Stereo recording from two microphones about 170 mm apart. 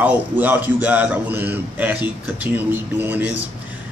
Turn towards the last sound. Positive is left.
turn(degrees=-10)  # may be behind; listen again after turning